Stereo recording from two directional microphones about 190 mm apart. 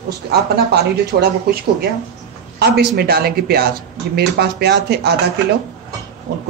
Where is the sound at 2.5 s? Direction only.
60° right (ahead or behind).